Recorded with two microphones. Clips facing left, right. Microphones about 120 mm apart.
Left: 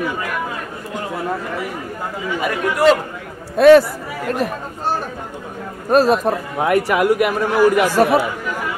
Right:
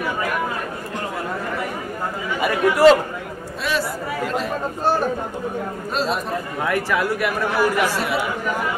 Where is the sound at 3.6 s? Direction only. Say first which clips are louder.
Left 15 dB; 55° left (ahead or behind).